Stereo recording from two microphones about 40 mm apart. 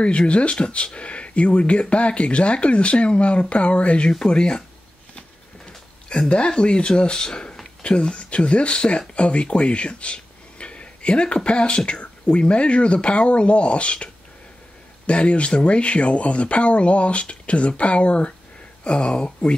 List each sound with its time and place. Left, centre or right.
0.3 s speech: left
6.2 s speech: left